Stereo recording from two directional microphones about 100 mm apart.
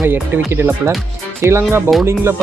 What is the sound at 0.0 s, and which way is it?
Speech, 20° right (ahead or behind).